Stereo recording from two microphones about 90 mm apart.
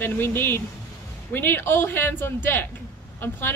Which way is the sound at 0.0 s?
25° left (ahead or behind).